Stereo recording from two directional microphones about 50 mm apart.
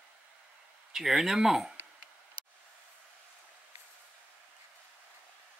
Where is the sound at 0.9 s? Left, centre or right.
Centre.